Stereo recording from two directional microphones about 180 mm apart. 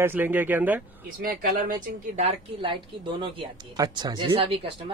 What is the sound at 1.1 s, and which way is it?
Speech, 55° right (ahead or behind).